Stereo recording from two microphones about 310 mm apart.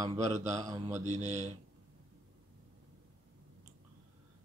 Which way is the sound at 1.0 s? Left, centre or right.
Right.